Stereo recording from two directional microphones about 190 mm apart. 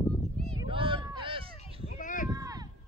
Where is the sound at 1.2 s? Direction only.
30° right (ahead or behind).